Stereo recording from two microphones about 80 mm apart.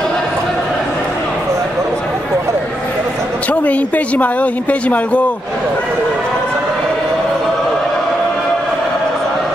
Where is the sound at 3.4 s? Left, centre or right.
Centre.